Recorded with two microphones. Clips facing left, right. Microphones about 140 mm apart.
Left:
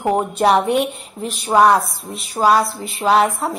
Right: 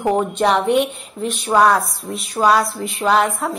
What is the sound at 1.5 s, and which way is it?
Speech, 20° left (ahead or behind).